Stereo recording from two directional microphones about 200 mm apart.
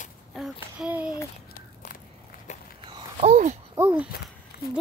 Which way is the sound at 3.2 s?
35° right (ahead or behind).